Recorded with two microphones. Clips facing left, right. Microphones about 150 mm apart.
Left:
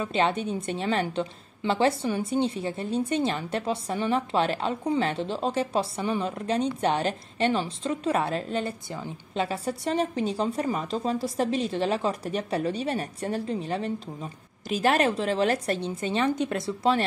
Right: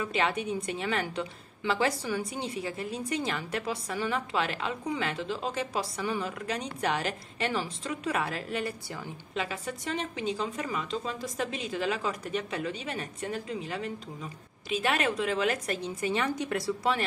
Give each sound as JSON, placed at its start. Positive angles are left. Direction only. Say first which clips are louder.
{"t": 0.0, "sound": "a woman's voice", "louder": "left 4 dB", "side_deg": 25}